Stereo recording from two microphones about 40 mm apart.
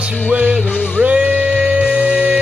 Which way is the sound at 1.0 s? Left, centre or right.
Right.